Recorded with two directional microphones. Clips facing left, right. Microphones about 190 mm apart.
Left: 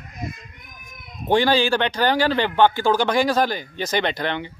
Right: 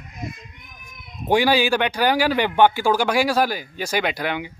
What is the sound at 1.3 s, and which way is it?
A man's voice, 10° right (ahead or behind).